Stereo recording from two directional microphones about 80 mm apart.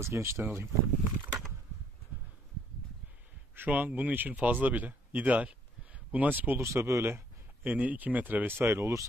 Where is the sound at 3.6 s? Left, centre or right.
Centre.